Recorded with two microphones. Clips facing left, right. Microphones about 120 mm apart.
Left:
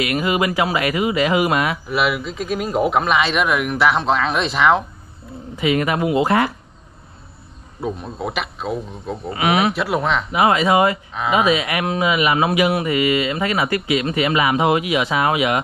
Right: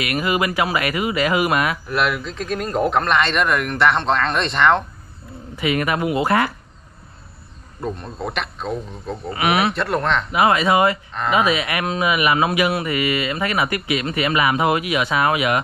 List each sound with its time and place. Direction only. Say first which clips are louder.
0.0 s speech: left 2 dB; 25° left (ahead or behind)
1.9 s speech: left 1 dB; 5° left (ahead or behind)
5.6 s speech: left 2 dB; 25° left (ahead or behind)
7.8 s speech: left 2 dB; 5° left (ahead or behind)
9.3 s speech: left 1 dB; 20° left (ahead or behind)
9.8 s speech: left 1 dB; 5° left (ahead or behind)
10.3 s speech: left 1 dB; 25° left (ahead or behind)